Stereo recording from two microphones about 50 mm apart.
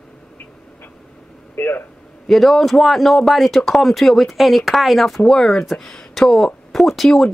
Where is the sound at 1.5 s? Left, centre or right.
Left.